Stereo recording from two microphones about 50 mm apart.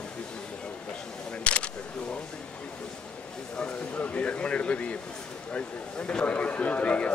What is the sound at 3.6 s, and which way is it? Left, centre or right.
A man's voice, left.